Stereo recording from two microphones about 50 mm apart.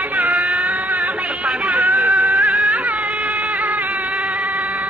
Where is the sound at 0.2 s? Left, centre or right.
Right.